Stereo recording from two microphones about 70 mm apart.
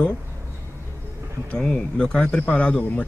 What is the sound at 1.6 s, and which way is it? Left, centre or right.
Speech, centre.